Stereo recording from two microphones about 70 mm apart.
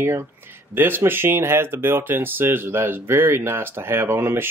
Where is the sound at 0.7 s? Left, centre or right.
Right.